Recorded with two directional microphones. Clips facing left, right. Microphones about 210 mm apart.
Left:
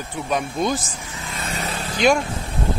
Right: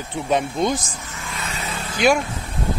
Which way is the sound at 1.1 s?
20° left (ahead or behind).